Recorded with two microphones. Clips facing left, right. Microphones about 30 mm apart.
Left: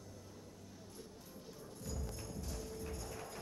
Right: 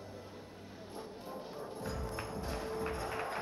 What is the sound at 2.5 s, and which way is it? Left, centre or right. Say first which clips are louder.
Music: right 10 dB; right.